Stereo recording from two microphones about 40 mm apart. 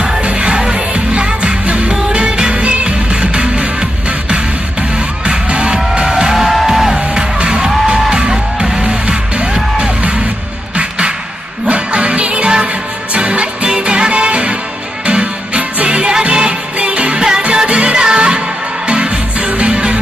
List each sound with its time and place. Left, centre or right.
0.2 s music: right
6.3 s music: centre
7.2 s music: right